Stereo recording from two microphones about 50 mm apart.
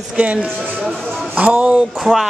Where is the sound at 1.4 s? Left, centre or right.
Right.